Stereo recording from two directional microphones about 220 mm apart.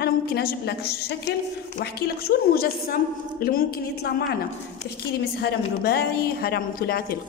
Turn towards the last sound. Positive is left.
turn(degrees=45)  # may be behind; listen again after turning